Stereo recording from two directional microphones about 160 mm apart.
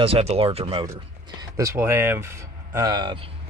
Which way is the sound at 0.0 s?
40° right (ahead or behind).